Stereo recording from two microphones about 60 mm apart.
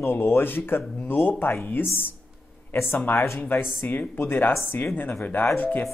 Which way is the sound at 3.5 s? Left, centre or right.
Left.